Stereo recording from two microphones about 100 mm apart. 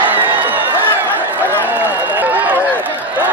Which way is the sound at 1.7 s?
20° right (ahead or behind).